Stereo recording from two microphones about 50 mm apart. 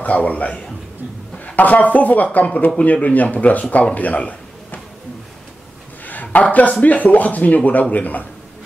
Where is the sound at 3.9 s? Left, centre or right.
Left.